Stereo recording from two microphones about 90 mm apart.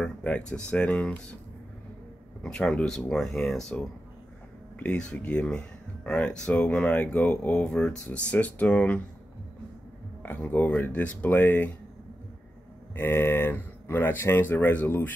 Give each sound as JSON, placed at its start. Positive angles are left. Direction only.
{"t": 0.0, "sound": "speech", "side_deg": 10}
{"t": 2.4, "sound": "speech", "side_deg": 5}
{"t": 4.7, "sound": "speech", "side_deg": 10}
{"t": 10.5, "sound": "speech", "side_deg": 20}
{"t": 12.9, "sound": "speech", "side_deg": 25}